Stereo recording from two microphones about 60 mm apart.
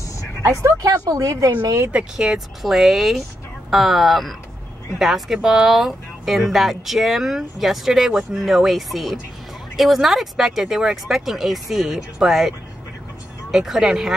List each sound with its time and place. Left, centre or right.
0.6 s speech: right
1.9 s speech: centre
2.2 s speech: centre